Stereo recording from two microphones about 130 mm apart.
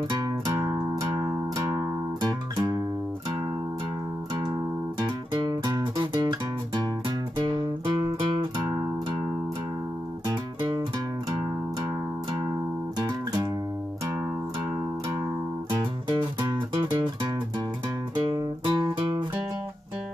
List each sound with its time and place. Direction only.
0.1 s music: 30° right (ahead or behind)
4.3 s music: 30° right (ahead or behind)
8.6 s music: 15° right (ahead or behind)
10.2 s music: 30° right (ahead or behind)
15.7 s music: 35° right (ahead or behind)